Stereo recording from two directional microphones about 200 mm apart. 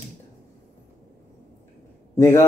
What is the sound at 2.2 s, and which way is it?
Speech, 15° left (ahead or behind).